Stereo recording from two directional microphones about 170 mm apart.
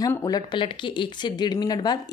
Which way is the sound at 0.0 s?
20° left (ahead or behind).